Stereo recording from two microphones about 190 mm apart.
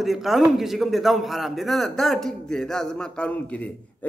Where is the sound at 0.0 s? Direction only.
Centre (ahead or behind).